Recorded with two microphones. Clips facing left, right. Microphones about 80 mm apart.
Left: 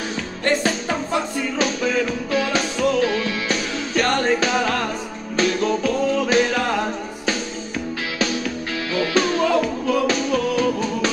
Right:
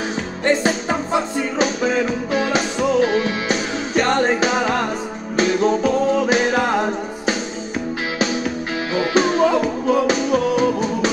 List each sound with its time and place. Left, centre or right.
0.4 s music: right